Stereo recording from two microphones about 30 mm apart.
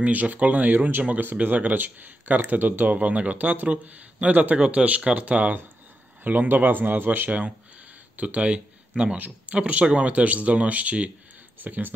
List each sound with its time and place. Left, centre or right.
0.0 s speech: right
1.0 s speech: right
3.0 s speech: right
3.8 s speech: right
6.2 s a man's voice: right
11.6 s speech: right